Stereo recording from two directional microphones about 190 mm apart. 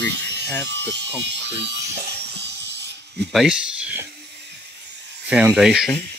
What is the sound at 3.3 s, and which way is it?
Speech, centre (ahead or behind).